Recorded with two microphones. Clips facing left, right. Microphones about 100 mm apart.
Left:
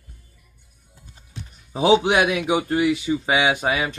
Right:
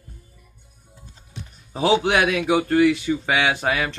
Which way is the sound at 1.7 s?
20° left (ahead or behind).